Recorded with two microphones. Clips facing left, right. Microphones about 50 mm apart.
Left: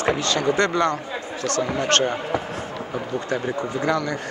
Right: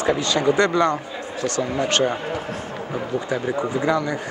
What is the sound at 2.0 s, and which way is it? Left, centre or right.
Speech, centre.